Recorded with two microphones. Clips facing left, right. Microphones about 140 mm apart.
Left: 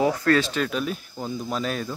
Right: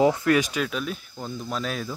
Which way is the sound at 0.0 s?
20° right (ahead or behind).